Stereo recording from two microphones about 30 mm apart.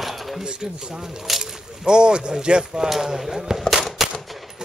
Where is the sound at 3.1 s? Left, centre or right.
Centre.